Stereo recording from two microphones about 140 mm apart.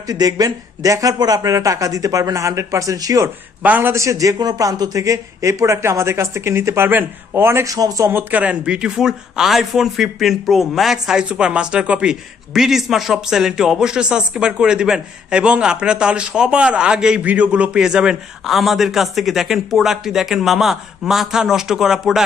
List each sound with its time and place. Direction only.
0.1 s speech: 25° right (ahead or behind)
3.6 s a man's voice: 15° right (ahead or behind)